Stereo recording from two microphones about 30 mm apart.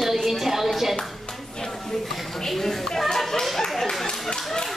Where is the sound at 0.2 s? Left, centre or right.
Centre.